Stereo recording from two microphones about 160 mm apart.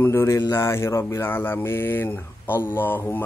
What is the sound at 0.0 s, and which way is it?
Speech, 15° left (ahead or behind).